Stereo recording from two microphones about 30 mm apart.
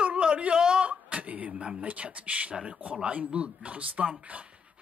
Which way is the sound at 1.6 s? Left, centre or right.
Right.